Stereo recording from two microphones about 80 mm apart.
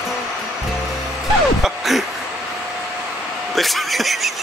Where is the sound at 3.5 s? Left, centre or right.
Centre.